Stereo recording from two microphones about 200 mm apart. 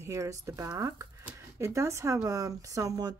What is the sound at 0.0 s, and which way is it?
Speech, 15° right (ahead or behind).